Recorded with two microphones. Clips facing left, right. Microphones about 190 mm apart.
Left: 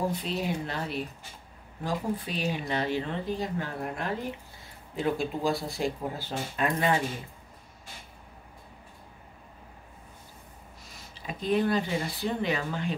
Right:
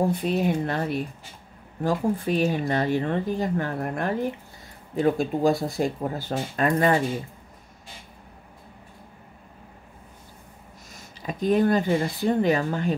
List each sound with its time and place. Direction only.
0.2 s speech: 55° right (ahead or behind)
11.2 s speech: 45° right (ahead or behind)